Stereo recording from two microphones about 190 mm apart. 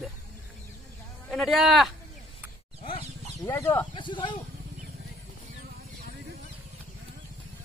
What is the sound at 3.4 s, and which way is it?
Speech, 15° left (ahead or behind).